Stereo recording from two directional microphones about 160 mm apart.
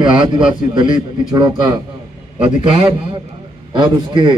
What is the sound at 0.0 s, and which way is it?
A man's voice, 30° right (ahead or behind).